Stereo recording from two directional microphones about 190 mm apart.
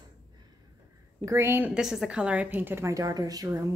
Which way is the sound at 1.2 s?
15° right (ahead or behind).